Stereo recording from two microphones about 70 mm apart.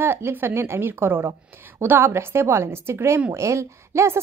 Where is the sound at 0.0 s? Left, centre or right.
Right.